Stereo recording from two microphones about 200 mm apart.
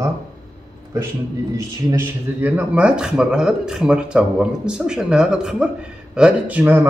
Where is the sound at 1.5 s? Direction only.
15° right (ahead or behind).